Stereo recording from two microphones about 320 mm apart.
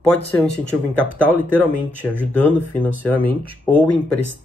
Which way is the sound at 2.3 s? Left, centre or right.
Centre.